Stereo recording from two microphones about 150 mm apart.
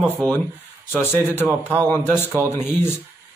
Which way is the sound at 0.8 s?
15° left (ahead or behind).